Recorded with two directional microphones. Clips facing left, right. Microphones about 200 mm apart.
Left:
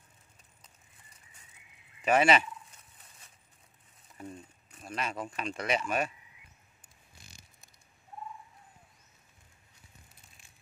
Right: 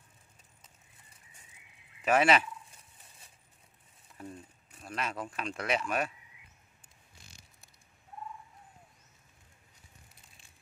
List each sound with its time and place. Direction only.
2.0 s speech: centre (ahead or behind)
4.2 s a sound: centre (ahead or behind)
4.7 s speech: centre (ahead or behind)